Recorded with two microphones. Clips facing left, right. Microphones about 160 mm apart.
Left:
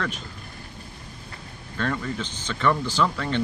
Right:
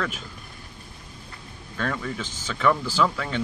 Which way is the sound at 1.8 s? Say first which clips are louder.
Left 1 dB; 5° right (ahead or behind).